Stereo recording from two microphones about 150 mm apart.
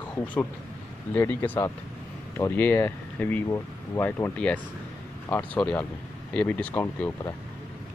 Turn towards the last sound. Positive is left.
turn(degrees=15)  # may be behind; listen again after turning